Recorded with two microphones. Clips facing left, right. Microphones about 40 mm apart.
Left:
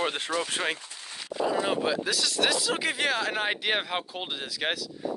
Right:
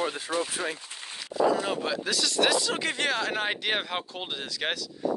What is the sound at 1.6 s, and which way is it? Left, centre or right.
Speech, centre.